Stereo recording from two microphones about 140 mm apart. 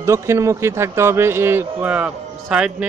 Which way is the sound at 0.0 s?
20° right (ahead or behind).